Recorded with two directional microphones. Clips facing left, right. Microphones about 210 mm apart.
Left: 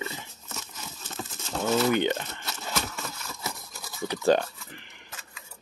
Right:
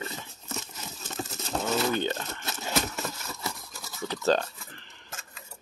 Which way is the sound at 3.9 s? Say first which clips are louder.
Left 3 dB; 15° left (ahead or behind).